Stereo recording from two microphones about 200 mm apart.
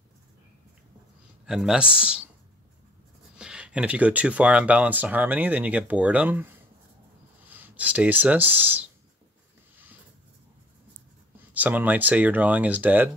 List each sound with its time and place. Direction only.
1.4 s speech: 5° right (ahead or behind)
3.3 s speech: 5° right (ahead or behind)
7.5 s speech: 10° right (ahead or behind)
11.5 s speech: 10° right (ahead or behind)